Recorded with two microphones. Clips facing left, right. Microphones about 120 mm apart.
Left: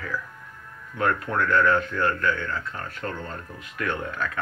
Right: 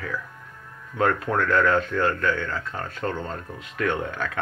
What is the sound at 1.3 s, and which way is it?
A man's voice, 85° right.